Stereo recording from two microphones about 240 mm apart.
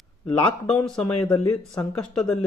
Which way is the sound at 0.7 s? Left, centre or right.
Centre.